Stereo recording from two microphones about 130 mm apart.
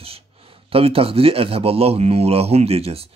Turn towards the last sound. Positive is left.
turn(degrees=-50)  # may be behind; listen again after turning